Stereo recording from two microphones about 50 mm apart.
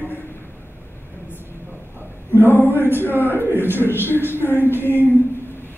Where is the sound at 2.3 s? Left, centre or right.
Left.